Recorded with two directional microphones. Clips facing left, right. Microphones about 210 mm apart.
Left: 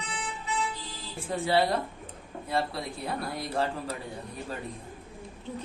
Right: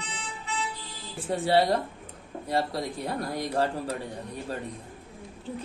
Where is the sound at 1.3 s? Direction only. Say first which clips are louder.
Right 3 dB; 35° right (ahead or behind).